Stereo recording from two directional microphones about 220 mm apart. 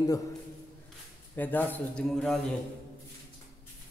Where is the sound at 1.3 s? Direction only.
10° left (ahead or behind).